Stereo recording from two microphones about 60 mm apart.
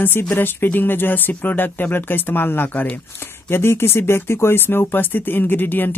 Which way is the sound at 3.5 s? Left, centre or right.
Left.